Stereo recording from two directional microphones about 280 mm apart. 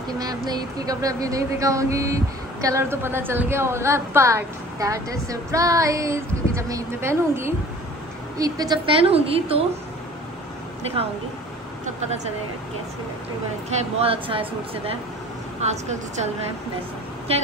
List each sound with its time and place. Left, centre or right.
0.2 s a woman's voice: centre
13.7 s a woman's voice: right
17.3 s a woman's voice: right